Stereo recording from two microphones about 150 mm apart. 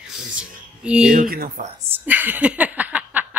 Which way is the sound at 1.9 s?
10° right (ahead or behind).